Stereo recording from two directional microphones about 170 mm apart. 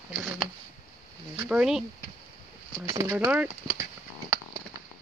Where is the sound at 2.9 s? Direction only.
15° right (ahead or behind).